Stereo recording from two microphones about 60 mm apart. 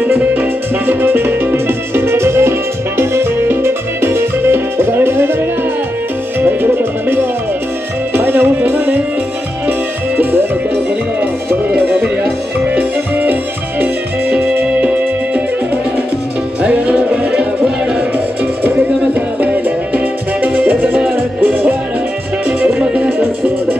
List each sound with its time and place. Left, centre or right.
0.0 s music: right
6.4 s music: right
12.6 s music: right
16.6 s music: right
19.1 s music: right